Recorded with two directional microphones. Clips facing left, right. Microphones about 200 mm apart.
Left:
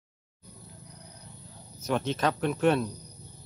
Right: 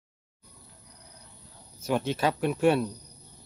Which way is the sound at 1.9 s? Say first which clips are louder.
Right 1 dB; 10° right (ahead or behind).